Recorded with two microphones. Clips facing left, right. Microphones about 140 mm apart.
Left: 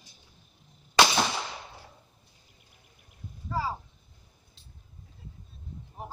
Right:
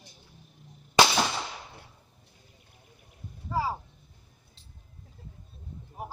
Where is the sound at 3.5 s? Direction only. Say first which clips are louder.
Right 2 dB; 15° right (ahead or behind).